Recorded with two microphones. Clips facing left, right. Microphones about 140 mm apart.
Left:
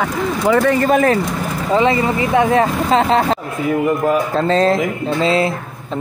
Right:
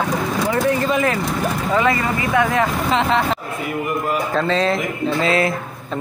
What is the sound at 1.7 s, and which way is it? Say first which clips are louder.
Speech: left 5 dB; 25° left (ahead or behind).